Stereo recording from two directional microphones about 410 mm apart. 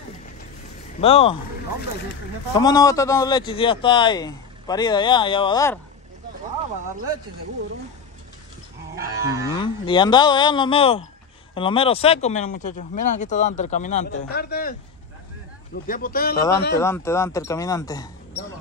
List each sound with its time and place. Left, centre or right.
1.0 s a man's voice: centre
2.5 s a man's voice: centre
9.2 s moo: centre
9.6 s a man's voice: centre
16.3 s a man's voice: centre